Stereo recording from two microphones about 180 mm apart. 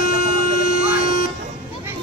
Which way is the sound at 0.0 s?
55° left (ahead or behind).